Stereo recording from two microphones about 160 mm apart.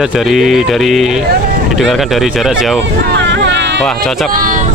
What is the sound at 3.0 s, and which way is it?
Vehicle, 90° right.